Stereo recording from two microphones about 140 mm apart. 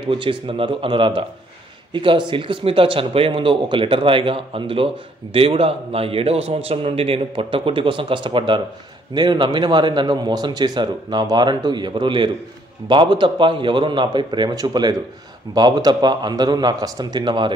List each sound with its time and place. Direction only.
0.0 s a man's voice: 35° right (ahead or behind)